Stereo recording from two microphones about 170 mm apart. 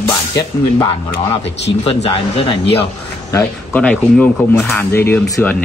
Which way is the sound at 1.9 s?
30° left (ahead or behind).